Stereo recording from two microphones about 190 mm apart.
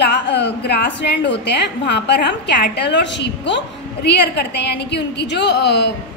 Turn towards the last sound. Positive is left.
turn(degrees=60)  # may be behind; listen again after turning